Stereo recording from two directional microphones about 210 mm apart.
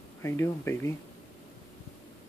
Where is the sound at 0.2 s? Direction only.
10° left (ahead or behind).